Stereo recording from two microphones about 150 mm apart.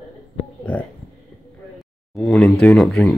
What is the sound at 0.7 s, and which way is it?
Speech, 10° left (ahead or behind).